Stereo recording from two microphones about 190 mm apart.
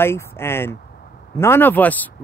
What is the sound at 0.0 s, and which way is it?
Speech, 15° left (ahead or behind).